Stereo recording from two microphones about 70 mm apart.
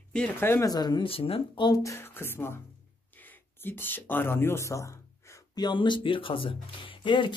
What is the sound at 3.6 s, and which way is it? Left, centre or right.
Speech, left.